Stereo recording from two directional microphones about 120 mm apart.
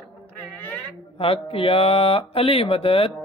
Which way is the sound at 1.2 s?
50° left (ahead or behind).